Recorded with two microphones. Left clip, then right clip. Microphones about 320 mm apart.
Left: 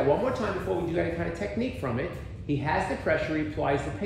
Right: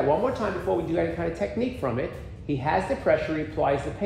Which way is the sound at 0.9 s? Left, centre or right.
Centre.